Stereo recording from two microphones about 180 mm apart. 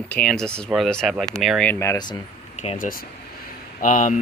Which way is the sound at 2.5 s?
35° left (ahead or behind).